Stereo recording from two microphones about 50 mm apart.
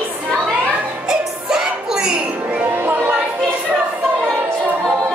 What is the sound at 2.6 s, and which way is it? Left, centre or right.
Music, right.